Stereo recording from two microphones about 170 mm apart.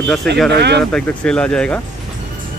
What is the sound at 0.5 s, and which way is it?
Speech, 80° right.